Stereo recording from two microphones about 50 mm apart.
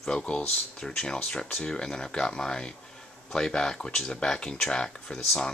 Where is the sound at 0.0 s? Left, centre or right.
Centre.